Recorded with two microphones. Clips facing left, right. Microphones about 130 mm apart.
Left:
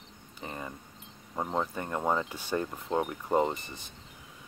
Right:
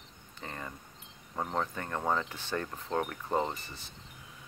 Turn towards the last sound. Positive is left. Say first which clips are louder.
# left 5 dB
turn(degrees=15)  # may be behind; listen again after turning